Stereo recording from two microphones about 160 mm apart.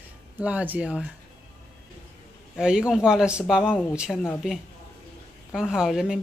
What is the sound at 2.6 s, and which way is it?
A woman's voice, 5° right (ahead or behind).